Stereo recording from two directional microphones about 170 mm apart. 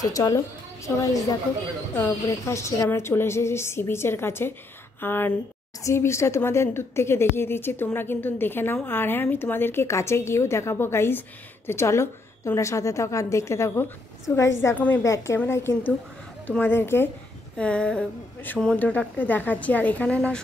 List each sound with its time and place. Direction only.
0.0 s a woman's voice: 20° left (ahead or behind)